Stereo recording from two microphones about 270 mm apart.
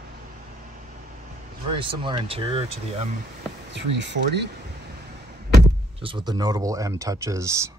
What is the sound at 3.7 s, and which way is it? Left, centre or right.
Speech, right.